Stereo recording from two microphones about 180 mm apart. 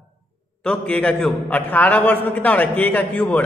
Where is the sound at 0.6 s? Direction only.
5° left (ahead or behind).